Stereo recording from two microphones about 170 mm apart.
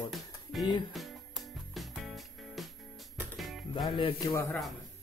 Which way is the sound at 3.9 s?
25° left (ahead or behind).